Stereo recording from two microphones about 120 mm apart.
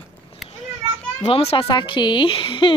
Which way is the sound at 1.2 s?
55° left (ahead or behind).